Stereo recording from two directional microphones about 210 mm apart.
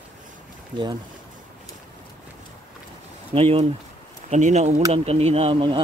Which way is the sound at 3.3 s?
30° right (ahead or behind).